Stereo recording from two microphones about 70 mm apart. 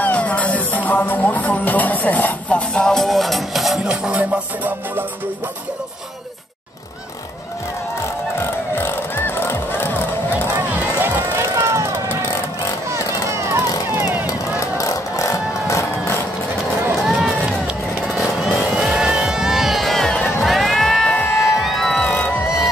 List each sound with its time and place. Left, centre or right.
0.0 s music: centre
3.9 s music: centre
8.4 s music: left
10.5 s run: right
11.3 s music: right
13.3 s vehicle: right
13.8 s vehicle: right
14.6 s music: left
17.0 s run: centre
18.0 s vehicle: centre
20.4 s run: centre
21.4 s music: centre
22.0 s music: left